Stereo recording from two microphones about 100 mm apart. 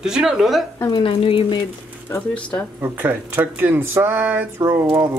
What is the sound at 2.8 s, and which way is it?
Speech, 20° right (ahead or behind).